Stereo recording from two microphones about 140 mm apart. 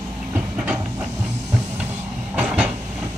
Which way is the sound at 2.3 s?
10° right (ahead or behind).